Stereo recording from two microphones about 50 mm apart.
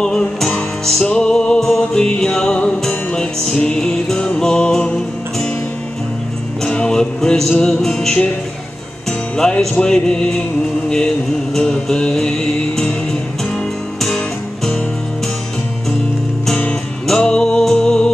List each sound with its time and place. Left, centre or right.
0.0 s music: centre
6.6 s music: centre
9.4 s music: centre
11.5 s music: centre
17.2 s music: centre